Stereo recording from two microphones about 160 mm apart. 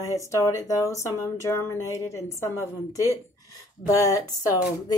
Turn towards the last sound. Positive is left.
turn(degrees=25)  # may be behind; listen again after turning